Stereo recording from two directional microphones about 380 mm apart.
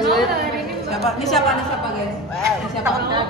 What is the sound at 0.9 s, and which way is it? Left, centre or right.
Speech, centre.